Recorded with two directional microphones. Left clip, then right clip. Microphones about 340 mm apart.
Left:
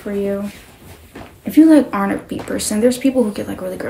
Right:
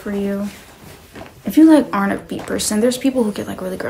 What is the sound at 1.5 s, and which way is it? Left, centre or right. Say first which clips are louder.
Speech: even; centre.